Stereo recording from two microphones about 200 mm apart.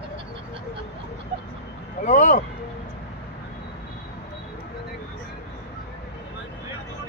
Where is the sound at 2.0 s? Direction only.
40° left (ahead or behind).